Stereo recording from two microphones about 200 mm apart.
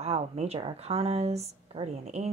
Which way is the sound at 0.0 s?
30° right (ahead or behind).